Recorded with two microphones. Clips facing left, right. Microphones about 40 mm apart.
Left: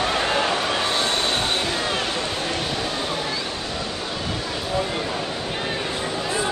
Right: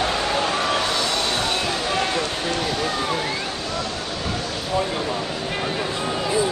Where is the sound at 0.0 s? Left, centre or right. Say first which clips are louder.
Even; left.